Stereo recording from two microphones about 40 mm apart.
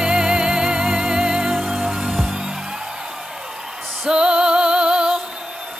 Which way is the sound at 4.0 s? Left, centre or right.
Right.